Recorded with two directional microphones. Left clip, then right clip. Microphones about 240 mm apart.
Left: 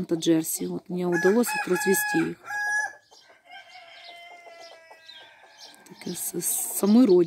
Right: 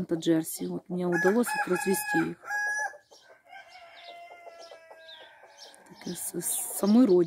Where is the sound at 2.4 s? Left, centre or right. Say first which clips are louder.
Left 3 dB; right.